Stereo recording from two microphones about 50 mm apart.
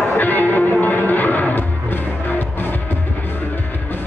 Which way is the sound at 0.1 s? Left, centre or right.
Left.